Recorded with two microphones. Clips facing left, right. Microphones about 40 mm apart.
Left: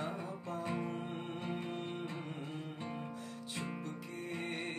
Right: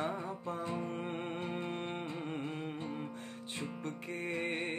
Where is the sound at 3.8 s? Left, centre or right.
Right.